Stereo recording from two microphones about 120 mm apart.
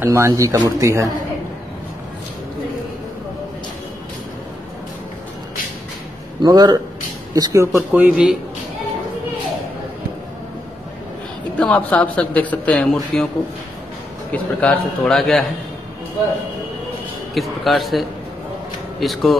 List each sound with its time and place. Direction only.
0.0 s speech: 20° right (ahead or behind)
6.4 s a man's voice: 35° right (ahead or behind)
7.7 s speech: 10° right (ahead or behind)
11.6 s a man's voice: 10° left (ahead or behind)
14.3 s a man's voice: 10° left (ahead or behind)
17.3 s a man's voice: centre (ahead or behind)